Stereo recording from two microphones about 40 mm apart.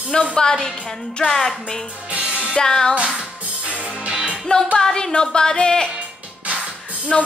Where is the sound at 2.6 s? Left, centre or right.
Centre.